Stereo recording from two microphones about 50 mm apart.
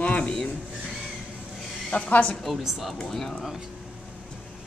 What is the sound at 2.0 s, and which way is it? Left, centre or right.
Speech, left.